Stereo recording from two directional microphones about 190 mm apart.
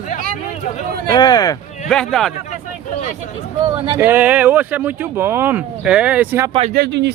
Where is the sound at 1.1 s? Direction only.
20° left (ahead or behind).